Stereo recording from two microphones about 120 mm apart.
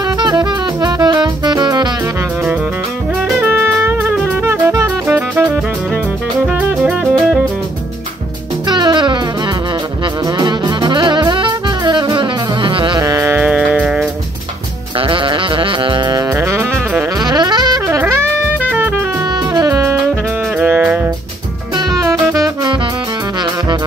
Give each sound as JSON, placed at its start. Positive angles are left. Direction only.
{"t": 0.0, "sound": "music", "side_deg": -35}
{"t": 3.4, "sound": "music", "side_deg": -20}
{"t": 6.4, "sound": "music", "side_deg": -5}
{"t": 8.6, "sound": "music", "side_deg": -40}
{"t": 10.2, "sound": "saxophone", "side_deg": -35}
{"t": 13.0, "sound": "music", "side_deg": -25}
{"t": 13.4, "sound": "music", "side_deg": -5}
{"t": 15.0, "sound": "saxophone", "side_deg": -45}
{"t": 17.2, "sound": "music", "side_deg": -35}
{"t": 17.8, "sound": "music", "side_deg": -25}
{"t": 18.6, "sound": "music", "side_deg": -15}
{"t": 19.5, "sound": "saxophone", "side_deg": -30}
{"t": 20.5, "sound": "music", "side_deg": -15}
{"t": 21.7, "sound": "music", "side_deg": -35}